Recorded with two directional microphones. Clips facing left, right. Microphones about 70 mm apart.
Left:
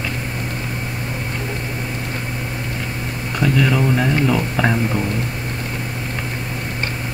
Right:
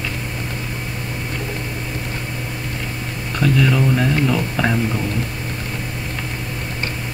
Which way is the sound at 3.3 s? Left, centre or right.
Centre.